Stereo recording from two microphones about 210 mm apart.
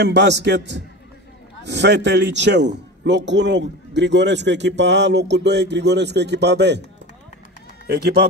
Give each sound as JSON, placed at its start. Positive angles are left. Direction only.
{"t": 0.0, "sound": "a man's voice", "side_deg": -55}
{"t": 7.8, "sound": "speech", "side_deg": -50}